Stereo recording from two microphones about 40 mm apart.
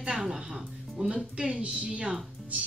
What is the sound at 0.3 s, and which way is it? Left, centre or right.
Speech, centre.